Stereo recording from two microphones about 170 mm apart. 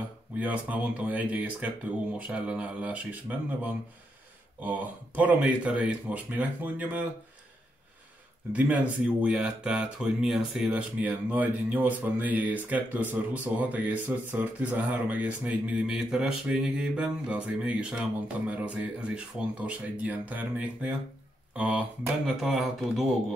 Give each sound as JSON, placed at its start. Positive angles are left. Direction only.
{"t": 0.4, "sound": "speech", "side_deg": -10}
{"t": 8.8, "sound": "speech", "side_deg": -5}